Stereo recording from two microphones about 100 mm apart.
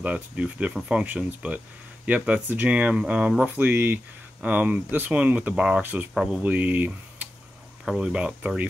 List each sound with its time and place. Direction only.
0.0 s speech: 15° right (ahead or behind)
5.8 s speech: 15° right (ahead or behind)